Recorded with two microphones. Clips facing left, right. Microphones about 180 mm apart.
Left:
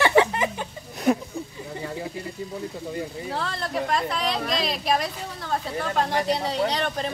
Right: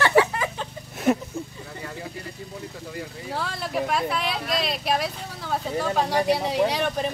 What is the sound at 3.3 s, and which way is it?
A woman's voice, 5° right (ahead or behind).